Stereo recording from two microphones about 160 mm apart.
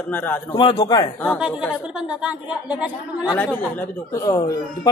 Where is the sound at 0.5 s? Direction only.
30° left (ahead or behind).